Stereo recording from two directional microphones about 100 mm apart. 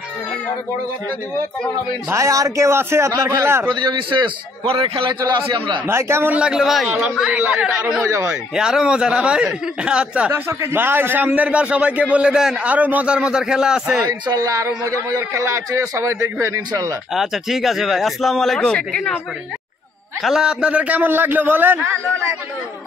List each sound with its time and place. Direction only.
2.0 s a man's voice: 30° right (ahead or behind)
3.6 s a man's voice: 50° right (ahead or behind)
5.9 s a man's voice: 25° right (ahead or behind)
6.3 s a man's voice: 10° right (ahead or behind)
8.1 s a man's voice: 25° right (ahead or behind)
8.5 s a man's voice: 5° right (ahead or behind)
10.3 s a man's voice: 25° right (ahead or behind); by 14.0 s 5° right (ahead or behind)
14.0 s a man's voice: 40° right (ahead or behind)
17.1 s speech: centre (ahead or behind)
20.2 s a man's voice: 5° right (ahead or behind); by 22.3 s 25° right (ahead or behind)